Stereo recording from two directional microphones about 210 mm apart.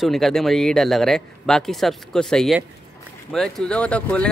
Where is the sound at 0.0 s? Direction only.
Centre (ahead or behind).